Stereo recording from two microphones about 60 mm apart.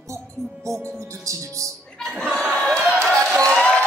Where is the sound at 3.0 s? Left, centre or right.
Centre.